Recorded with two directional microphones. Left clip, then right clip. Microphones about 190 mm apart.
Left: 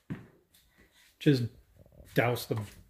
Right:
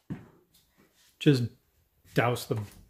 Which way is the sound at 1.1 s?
15° right (ahead or behind).